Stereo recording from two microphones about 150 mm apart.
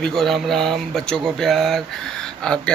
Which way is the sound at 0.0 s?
Centre (ahead or behind).